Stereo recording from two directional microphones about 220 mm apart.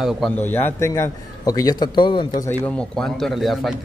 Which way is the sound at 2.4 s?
5° left (ahead or behind).